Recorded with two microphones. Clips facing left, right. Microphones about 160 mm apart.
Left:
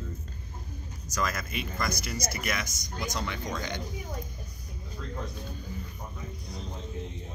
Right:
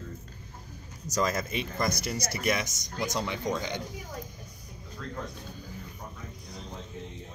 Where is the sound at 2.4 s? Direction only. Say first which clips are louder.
Right 4 dB; 30° right (ahead or behind).